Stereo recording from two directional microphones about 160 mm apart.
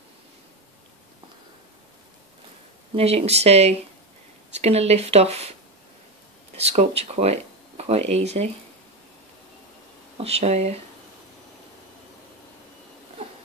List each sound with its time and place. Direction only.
3.0 s speech: 40° right (ahead or behind)
6.5 s speech: 40° right (ahead or behind)
10.1 s speech: 40° right (ahead or behind)